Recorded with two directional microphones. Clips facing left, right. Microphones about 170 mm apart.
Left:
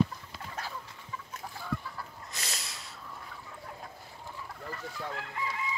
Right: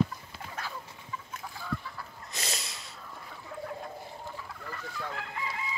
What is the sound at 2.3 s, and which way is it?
Snort, 20° right (ahead or behind).